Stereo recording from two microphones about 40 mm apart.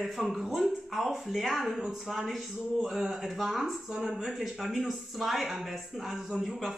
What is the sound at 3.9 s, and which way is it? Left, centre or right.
Speech, centre.